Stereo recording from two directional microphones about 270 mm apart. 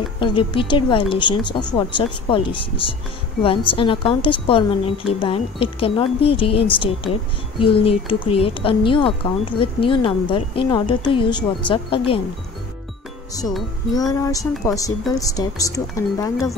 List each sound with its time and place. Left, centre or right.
0.2 s speech: centre
13.9 s speech: centre